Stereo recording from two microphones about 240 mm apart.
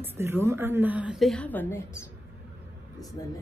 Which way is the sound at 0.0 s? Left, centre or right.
Centre.